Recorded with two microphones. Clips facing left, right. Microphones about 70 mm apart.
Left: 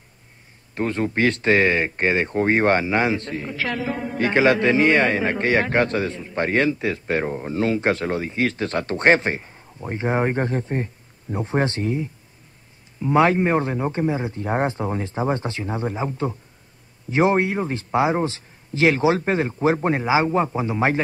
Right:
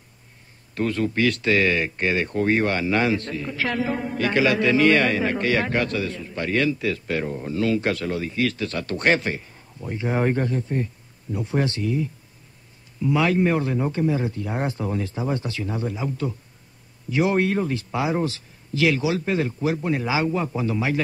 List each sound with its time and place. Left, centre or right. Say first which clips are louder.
0.7 s a man's voice: left 1 dB; left
3.5 s a man's voice: right 2 dB; centre
4.2 s a man's voice: left 3 dB; left